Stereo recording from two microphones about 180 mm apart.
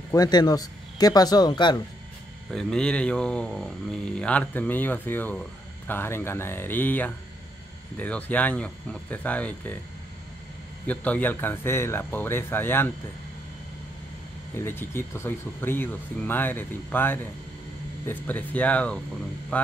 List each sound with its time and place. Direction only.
0.1 s speech: 20° left (ahead or behind)
2.5 s speech: 5° left (ahead or behind)
10.9 s speech: 10° left (ahead or behind)
14.5 s speech: 15° left (ahead or behind)